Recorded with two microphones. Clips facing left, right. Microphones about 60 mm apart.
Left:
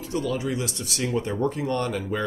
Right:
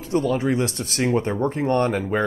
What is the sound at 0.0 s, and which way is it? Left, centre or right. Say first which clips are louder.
Speech: right 6 dB; right.